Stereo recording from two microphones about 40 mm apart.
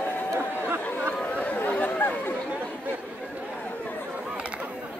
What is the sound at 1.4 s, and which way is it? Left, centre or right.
Chatter, left.